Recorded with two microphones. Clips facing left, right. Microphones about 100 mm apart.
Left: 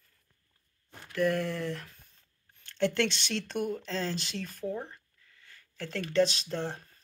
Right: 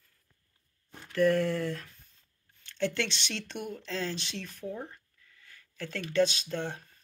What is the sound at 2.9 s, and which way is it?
Speech, 45° left (ahead or behind).